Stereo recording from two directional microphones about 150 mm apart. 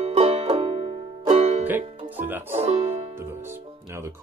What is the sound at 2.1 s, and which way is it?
Music, 10° right (ahead or behind).